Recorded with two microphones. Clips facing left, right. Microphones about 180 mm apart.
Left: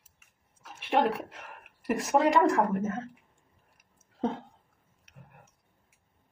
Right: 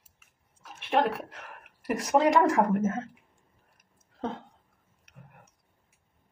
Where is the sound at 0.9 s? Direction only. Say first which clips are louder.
Even; centre (ahead or behind).